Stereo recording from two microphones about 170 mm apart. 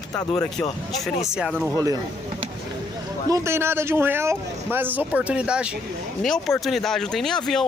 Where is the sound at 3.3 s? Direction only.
15° right (ahead or behind).